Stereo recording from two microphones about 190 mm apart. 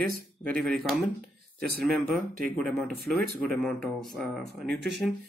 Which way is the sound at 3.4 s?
Centre (ahead or behind).